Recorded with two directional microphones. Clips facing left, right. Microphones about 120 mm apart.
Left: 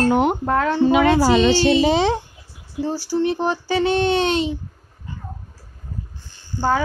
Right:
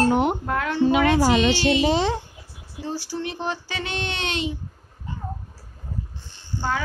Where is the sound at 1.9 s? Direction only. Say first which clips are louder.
Left 4 dB; 90° left.